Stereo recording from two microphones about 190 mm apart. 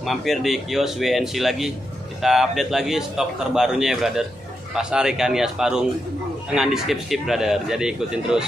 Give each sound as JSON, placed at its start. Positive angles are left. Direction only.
{"t": 0.0, "sound": "a man's voice", "side_deg": 0}